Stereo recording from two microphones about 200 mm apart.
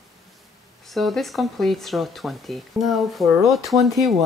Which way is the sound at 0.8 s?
Centre (ahead or behind).